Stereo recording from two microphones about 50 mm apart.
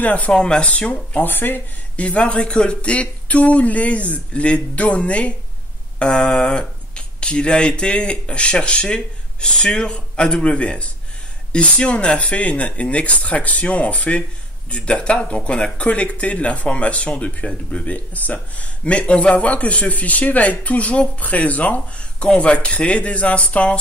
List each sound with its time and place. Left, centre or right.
0.0 s speech: left
0.3 s speech: centre
1.2 s speech: left
2.0 s speech: left